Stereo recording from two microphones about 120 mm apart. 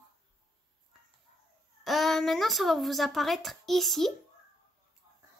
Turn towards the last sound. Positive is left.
turn(degrees=0)  # may be behind; listen again after turning